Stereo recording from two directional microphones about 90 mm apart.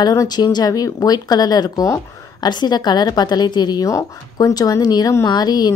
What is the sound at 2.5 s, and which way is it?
A woman's voice, 50° left (ahead or behind).